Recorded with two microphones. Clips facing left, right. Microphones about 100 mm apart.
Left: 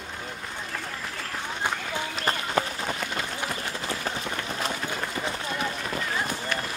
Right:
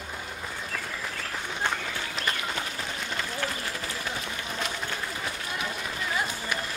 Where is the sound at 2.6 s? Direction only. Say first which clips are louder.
Left 9 dB; 50° left (ahead or behind).